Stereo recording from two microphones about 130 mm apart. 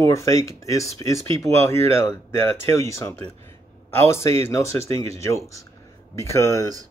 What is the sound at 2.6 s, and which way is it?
Speech, 20° left (ahead or behind).